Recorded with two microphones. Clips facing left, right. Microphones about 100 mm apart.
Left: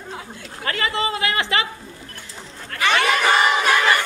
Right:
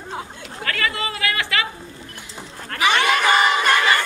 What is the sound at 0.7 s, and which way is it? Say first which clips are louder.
Speech: left 2 dB; 25° left (ahead or behind).